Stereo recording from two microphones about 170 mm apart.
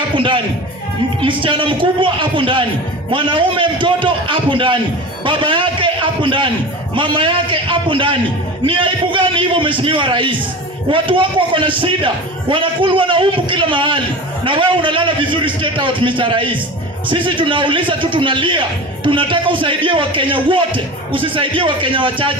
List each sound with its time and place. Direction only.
0.1 s a man's voice: 30° right (ahead or behind)